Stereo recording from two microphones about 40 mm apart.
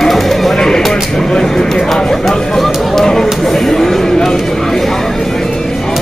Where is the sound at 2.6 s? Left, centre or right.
Centre.